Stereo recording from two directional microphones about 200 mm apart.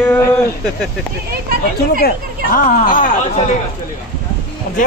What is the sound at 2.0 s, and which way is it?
Speech, 45° left (ahead or behind).